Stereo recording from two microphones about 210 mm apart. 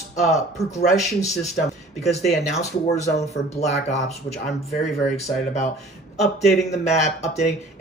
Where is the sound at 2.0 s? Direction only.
30° left (ahead or behind).